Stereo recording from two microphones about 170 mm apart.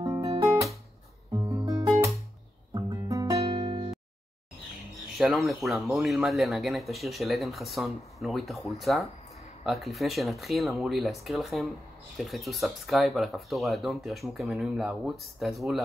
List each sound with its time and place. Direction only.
0.3 s music: 20° right (ahead or behind)
3.4 s music: 30° right (ahead or behind)
5.1 s speech: centre (ahead or behind)